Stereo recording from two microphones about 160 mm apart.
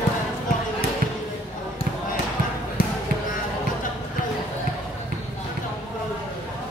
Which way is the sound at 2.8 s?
65° left (ahead or behind).